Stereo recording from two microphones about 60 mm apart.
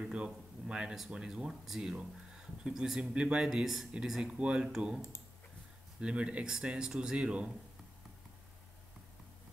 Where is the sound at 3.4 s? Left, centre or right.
Centre.